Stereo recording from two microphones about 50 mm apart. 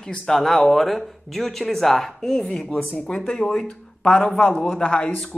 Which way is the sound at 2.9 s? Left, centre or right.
Centre.